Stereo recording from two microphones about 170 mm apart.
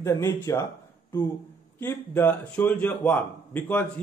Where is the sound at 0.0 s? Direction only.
15° left (ahead or behind).